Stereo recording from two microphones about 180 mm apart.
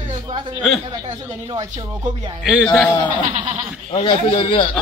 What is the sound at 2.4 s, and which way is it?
Speech, centre (ahead or behind).